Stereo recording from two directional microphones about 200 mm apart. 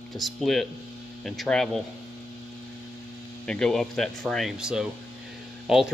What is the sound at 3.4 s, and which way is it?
Speech, 5° left (ahead or behind).